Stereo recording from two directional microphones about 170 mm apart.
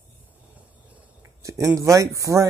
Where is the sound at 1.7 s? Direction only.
20° right (ahead or behind).